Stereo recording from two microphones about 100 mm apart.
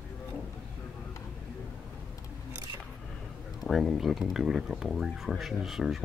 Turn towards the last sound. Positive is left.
turn(degrees=-5)  # may be behind; listen again after turning